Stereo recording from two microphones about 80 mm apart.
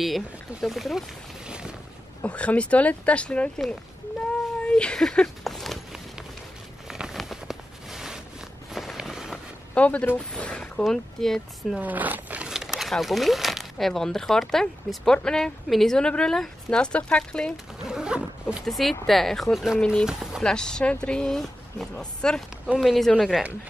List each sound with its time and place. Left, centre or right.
0.0 s speech: centre
2.2 s a woman's voice: centre
4.6 s a sound: centre
6.9 s a sound: centre
8.7 s walk: centre
9.8 s a woman's voice: centre
11.8 s speech: right
12.4 s a woman's voice: centre
17.8 s wild animals: centre
18.7 s speech: centre
20.1 s a sound: centre
20.4 s a woman's voice: centre